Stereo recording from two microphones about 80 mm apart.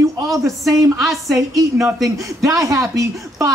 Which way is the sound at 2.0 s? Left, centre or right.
Right.